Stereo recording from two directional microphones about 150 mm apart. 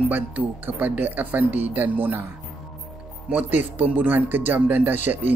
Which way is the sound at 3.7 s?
10° right (ahead or behind).